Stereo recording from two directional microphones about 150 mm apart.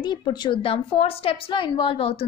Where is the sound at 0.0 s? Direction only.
30° left (ahead or behind).